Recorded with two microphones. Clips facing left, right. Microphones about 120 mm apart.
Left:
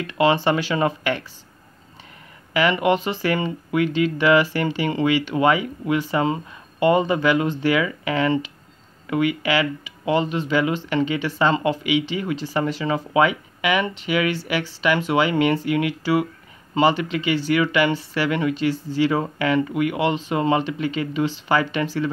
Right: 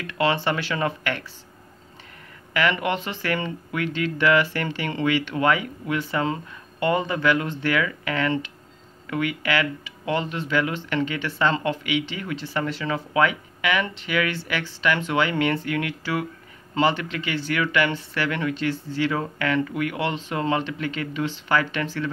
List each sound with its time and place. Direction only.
0.0 s speech: 20° left (ahead or behind)
2.5 s speech: 15° left (ahead or behind)